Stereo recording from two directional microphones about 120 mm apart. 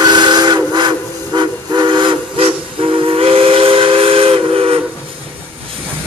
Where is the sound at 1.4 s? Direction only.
40° right (ahead or behind).